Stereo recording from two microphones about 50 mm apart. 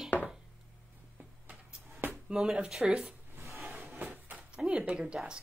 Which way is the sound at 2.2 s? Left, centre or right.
Centre.